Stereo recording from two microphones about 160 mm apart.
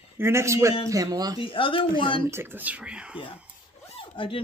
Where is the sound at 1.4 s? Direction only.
35° left (ahead or behind).